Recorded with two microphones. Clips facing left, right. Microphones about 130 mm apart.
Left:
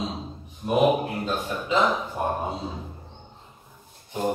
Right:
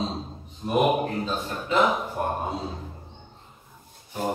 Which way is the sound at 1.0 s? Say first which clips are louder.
Even; 10° left (ahead or behind).